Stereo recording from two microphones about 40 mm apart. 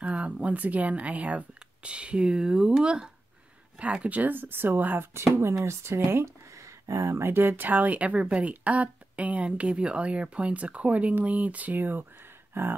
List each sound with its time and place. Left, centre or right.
0.0 s speech: right
3.8 s speech: right
5.1 s speech: right
7.2 s speech: right
12.6 s a sound: right